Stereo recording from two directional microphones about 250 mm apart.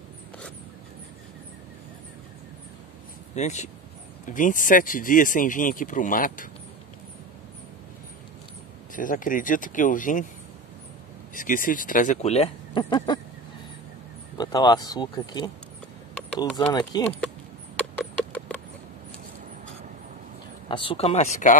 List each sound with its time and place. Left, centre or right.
3.3 s speech: left
8.9 s speech: left
11.3 s speech: left; by 13.2 s centre
14.4 s speech: centre
17.9 s clip-clop: centre
20.6 s speech: centre